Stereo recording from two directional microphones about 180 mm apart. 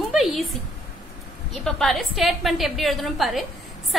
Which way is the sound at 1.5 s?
Centre (ahead or behind).